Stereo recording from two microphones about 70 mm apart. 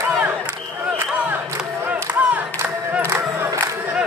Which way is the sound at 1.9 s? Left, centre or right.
Centre.